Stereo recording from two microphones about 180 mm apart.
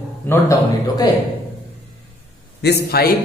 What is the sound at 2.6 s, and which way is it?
Speech, 60° left (ahead or behind).